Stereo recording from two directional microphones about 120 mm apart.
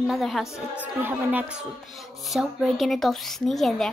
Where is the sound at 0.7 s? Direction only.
15° right (ahead or behind).